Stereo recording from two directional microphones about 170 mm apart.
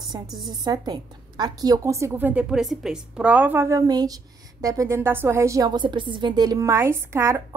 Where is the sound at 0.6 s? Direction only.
25° right (ahead or behind).